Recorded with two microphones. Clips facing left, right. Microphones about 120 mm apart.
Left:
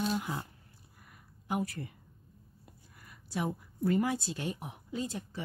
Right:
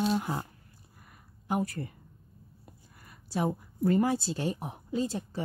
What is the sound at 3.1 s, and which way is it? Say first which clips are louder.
A woman's voice: right 5 dB; 35° right (ahead or behind).